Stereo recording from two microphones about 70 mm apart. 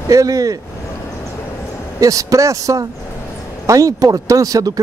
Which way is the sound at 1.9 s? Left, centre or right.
Right.